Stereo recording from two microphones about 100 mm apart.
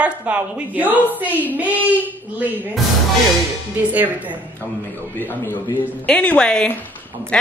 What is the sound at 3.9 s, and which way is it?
Speech, 15° right (ahead or behind).